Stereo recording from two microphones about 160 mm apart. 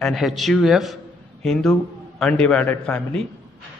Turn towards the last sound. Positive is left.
turn(degrees=10)  # may be behind; listen again after turning